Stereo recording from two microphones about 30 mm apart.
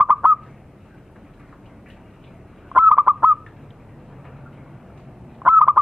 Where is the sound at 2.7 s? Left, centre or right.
Right.